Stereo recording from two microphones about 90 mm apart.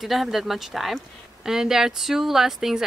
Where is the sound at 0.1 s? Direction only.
Centre (ahead or behind).